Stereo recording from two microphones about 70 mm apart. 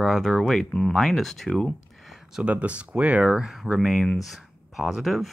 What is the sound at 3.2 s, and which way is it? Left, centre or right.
Speech, centre.